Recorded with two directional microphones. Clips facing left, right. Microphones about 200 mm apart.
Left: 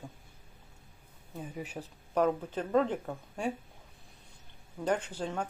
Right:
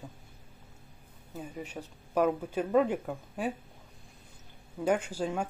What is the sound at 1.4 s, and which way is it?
Speech, 5° left (ahead or behind).